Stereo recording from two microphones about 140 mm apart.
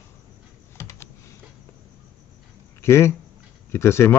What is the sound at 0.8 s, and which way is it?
Computer keyboard, 20° left (ahead or behind).